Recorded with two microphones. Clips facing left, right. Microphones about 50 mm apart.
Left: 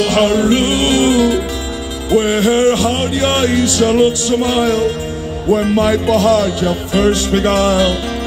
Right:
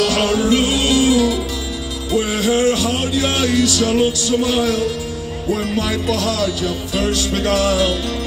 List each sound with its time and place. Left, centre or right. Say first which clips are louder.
0.0 s music: left 4 dB; left